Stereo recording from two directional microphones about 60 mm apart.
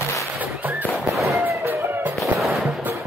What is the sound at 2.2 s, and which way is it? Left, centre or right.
Music, centre.